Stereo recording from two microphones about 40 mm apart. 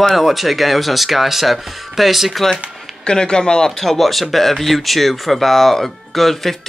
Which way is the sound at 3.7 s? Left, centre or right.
Centre.